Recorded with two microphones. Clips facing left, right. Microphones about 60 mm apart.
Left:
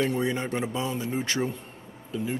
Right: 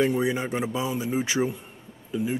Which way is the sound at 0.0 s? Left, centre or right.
Centre.